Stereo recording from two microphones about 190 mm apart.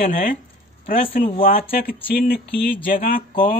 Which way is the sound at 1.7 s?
50° left (ahead or behind).